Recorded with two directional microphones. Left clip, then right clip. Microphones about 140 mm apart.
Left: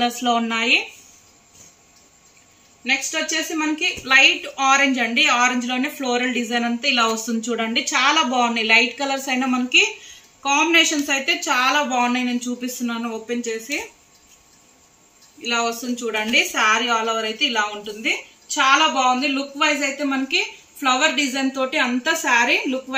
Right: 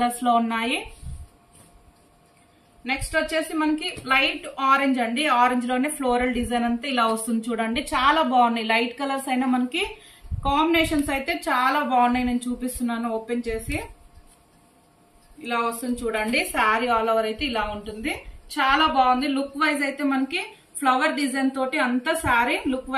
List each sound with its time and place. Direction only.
0.0 s a woman's voice: 25° right (ahead or behind)
2.8 s a woman's voice: 10° right (ahead or behind)
16.1 s a woman's voice: 15° right (ahead or behind)